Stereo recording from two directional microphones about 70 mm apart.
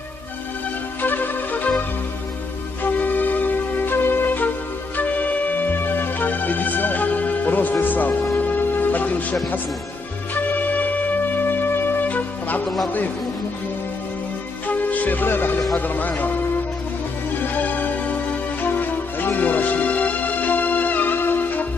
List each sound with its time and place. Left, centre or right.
1.0 s music: left
2.8 s music: left
10.3 s wind instrument: left
12.6 s a man's voice: centre
14.7 s music: left
15.7 s speech: left
17.4 s music: left